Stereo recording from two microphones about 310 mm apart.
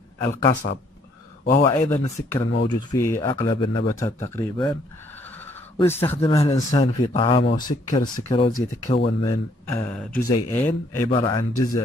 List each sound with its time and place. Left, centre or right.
0.3 s speech: left
1.7 s speech: centre
5.8 s speech: centre
9.2 s speech: centre